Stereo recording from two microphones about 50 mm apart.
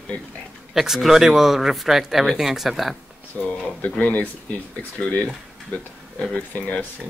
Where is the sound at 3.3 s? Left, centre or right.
Left.